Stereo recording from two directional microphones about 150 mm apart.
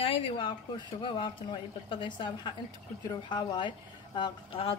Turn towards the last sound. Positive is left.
turn(degrees=35)  # may be behind; listen again after turning